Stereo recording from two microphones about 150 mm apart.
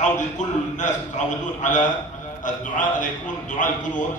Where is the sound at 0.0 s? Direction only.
55° left (ahead or behind).